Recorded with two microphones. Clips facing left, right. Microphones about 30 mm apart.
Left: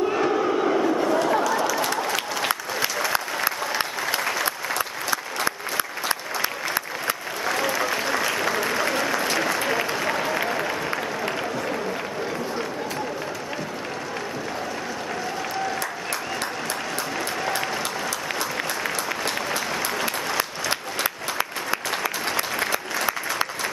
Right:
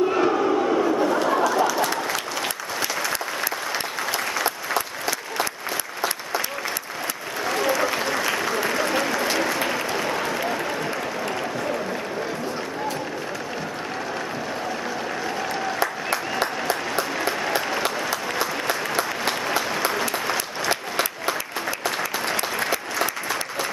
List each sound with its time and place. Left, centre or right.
0.0 s crowd: centre
0.6 s a sound: centre
3.0 s applause: centre
7.4 s applause: centre
15.8 s applause: centre
22.3 s applause: centre